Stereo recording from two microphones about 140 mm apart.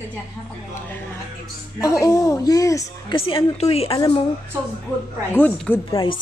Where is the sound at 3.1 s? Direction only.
40° left (ahead or behind).